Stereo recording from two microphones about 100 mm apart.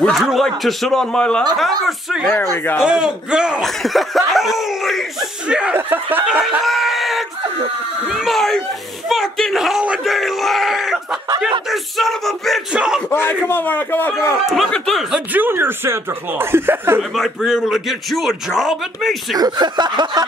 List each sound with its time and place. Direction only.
0.0 s a man's voice: centre (ahead or behind)
2.5 s a man's voice: 20° left (ahead or behind)
2.8 s a man's voice: 5° right (ahead or behind)
5.8 s speech: 20° right (ahead or behind)
6.2 s a man's voice: 5° right (ahead or behind)
13.1 s a man's voice: 20° left (ahead or behind)
14.4 s a man's voice: centre (ahead or behind)
15.0 s speech: 15° right (ahead or behind)
17.1 s a man's voice: 5° right (ahead or behind)
19.3 s a sound: 40° right (ahead or behind)